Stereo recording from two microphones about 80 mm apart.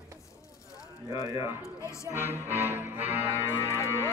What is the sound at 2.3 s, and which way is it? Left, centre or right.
Music, right.